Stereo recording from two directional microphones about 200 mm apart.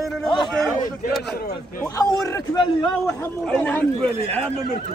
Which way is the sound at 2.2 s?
20° left (ahead or behind).